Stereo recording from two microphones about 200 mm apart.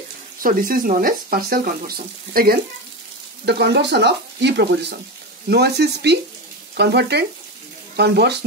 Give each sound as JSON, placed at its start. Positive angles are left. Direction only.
{"t": 0.4, "sound": "speech", "side_deg": -45}